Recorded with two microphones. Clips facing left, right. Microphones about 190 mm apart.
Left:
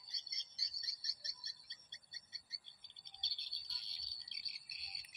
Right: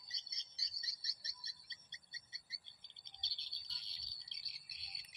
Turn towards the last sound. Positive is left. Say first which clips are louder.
# left 1 dB
turn(degrees=50)  # may be behind; listen again after turning